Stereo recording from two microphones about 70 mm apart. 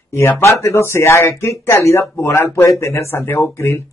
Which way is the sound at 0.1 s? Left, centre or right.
Left.